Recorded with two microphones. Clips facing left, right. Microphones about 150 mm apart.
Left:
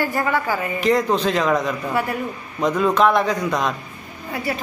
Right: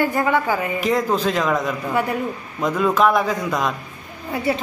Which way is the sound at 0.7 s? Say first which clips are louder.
Left 4 dB; centre (ahead or behind).